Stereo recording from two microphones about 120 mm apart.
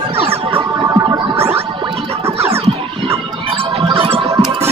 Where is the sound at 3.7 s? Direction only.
50° right (ahead or behind).